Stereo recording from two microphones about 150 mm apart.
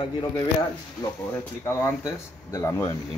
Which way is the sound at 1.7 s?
15° left (ahead or behind).